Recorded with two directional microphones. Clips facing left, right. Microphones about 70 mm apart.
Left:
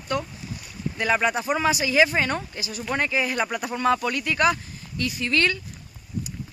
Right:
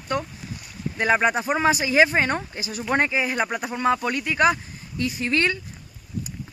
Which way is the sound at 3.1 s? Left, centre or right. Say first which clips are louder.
Right 1 dB; centre.